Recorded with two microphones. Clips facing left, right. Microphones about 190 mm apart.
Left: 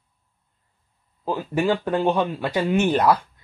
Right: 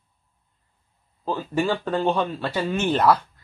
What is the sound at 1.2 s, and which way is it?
Speech, 10° left (ahead or behind).